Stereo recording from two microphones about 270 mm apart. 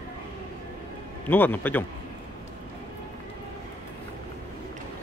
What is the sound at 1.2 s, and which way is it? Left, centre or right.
Speech, centre.